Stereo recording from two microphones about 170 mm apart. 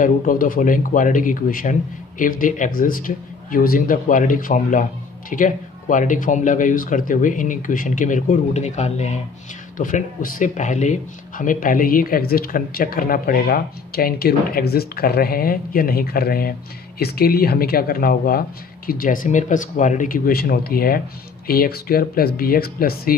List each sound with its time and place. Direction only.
0.0 s speech: 55° left (ahead or behind)